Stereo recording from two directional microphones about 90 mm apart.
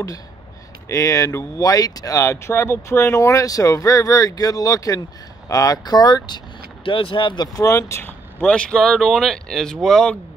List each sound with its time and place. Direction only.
0.8 s speech: 35° left (ahead or behind); by 7.4 s 65° left (ahead or behind)
7.5 s speech: 35° left (ahead or behind)
8.4 s speech: 15° left (ahead or behind)